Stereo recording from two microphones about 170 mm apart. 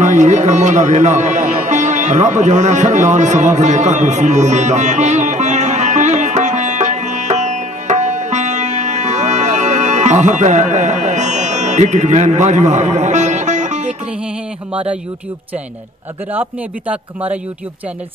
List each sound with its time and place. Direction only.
0.0 s music: 45° right (ahead or behind)
16.3 s speech: 10° right (ahead or behind)